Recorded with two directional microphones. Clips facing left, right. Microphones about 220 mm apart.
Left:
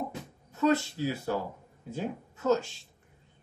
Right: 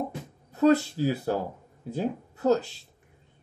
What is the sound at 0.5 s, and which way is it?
Speech, 35° right (ahead or behind).